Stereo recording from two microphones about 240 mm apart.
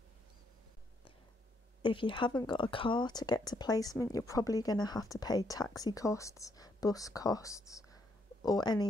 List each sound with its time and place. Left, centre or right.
1.8 s speech: left